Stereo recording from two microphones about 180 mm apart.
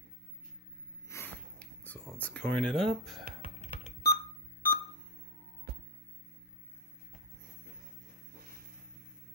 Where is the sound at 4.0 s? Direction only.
55° left (ahead or behind).